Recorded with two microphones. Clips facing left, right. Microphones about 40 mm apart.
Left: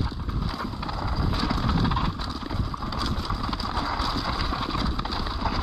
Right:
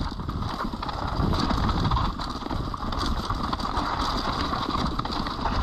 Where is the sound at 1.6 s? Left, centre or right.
Left.